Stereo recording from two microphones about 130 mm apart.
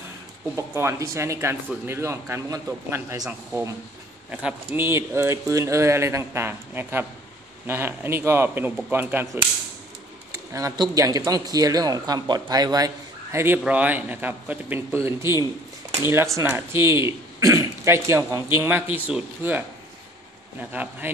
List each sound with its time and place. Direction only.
0.6 s speech: 20° right (ahead or behind)
4.3 s speech: 10° right (ahead or behind)
20.7 s speech: 15° right (ahead or behind)